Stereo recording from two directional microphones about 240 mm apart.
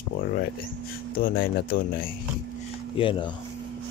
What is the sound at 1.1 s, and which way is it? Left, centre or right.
Speech, left.